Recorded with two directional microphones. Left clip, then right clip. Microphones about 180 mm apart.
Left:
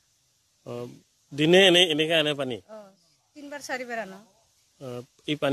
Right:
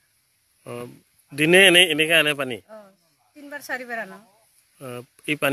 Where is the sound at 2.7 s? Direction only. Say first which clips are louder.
Right 1 dB; 10° left (ahead or behind).